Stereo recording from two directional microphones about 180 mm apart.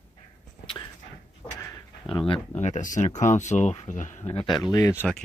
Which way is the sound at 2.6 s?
45° left (ahead or behind).